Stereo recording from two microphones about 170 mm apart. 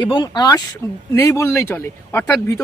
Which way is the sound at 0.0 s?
25° left (ahead or behind).